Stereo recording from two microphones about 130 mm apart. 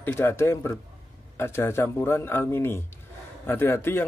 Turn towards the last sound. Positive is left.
turn(degrees=20)  # may be behind; listen again after turning